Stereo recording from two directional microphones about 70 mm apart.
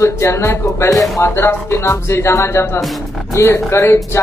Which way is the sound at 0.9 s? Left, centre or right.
Centre.